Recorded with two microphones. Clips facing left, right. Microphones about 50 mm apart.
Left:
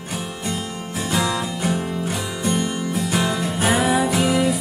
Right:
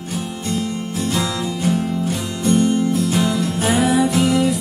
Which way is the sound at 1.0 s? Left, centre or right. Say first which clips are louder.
Left 1 dB; centre.